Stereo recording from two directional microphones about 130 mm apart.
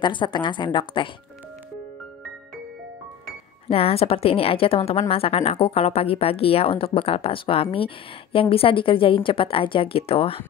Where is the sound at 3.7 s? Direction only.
50° left (ahead or behind).